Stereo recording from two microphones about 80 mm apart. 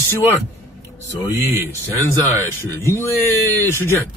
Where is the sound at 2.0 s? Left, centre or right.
Left.